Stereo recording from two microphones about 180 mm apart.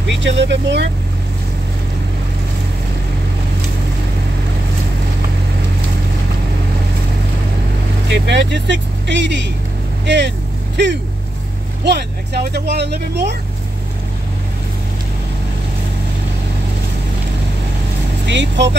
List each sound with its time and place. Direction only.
0.1 s speech: 80° right
8.1 s speech: 75° right (ahead or behind)
11.8 s speech: 65° right (ahead or behind)
18.2 s speech: 80° right